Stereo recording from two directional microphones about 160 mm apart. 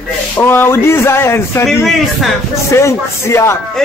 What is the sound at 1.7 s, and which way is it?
Speech, centre (ahead or behind).